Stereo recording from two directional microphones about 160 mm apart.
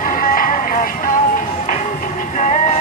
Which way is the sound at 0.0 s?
60° left (ahead or behind).